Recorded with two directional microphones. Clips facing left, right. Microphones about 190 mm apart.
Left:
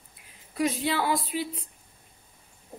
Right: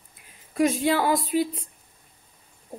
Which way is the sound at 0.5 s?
50° right (ahead or behind).